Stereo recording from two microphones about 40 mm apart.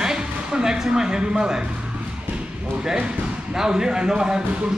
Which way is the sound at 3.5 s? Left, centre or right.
Centre.